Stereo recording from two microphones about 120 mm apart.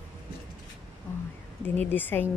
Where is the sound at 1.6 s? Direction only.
15° left (ahead or behind).